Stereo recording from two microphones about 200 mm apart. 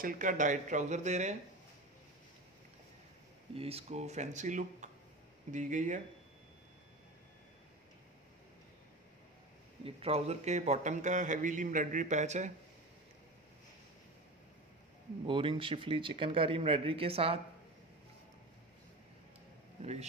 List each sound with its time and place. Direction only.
0.0 s a man's voice: 45° right (ahead or behind)
3.5 s a man's voice: 30° right (ahead or behind)
9.8 s a man's voice: 30° right (ahead or behind)
15.2 s speech: 25° right (ahead or behind)
19.8 s a man's voice: 35° right (ahead or behind)